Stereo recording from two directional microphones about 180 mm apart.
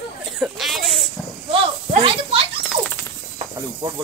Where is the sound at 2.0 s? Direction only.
30° right (ahead or behind).